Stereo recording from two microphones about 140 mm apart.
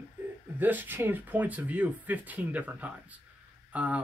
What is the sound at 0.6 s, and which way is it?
Speech, 15° right (ahead or behind).